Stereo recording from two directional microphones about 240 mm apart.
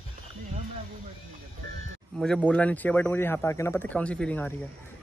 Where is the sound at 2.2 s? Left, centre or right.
Centre.